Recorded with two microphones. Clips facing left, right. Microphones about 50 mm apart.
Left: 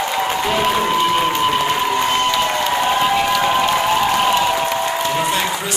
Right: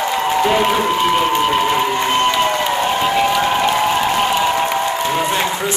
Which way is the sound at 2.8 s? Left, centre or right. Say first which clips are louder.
Even; centre.